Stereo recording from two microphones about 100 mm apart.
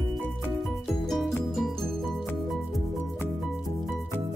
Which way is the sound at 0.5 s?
Centre (ahead or behind).